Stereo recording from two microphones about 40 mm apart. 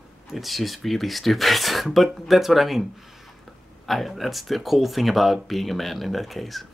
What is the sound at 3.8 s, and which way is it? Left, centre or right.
Speech, centre.